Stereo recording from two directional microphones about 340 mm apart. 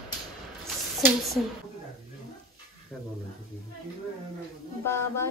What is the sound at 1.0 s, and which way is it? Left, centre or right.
Speech, centre.